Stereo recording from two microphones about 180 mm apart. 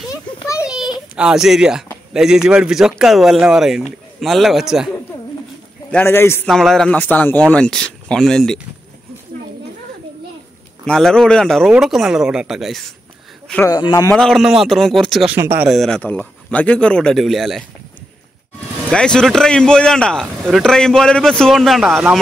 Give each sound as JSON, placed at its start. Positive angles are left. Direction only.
{"t": 1.1, "sound": "speech", "side_deg": -5}
{"t": 5.9, "sound": "a man's voice", "side_deg": 10}
{"t": 6.5, "sound": "speech", "side_deg": 0}
{"t": 10.9, "sound": "speech", "side_deg": 5}
{"t": 13.7, "sound": "speech", "side_deg": 20}
{"t": 14.1, "sound": "speech", "side_deg": 0}
{"t": 15.3, "sound": "speech", "side_deg": -10}
{"t": 15.7, "sound": "speech", "side_deg": 5}
{"t": 18.9, "sound": "speech", "side_deg": 5}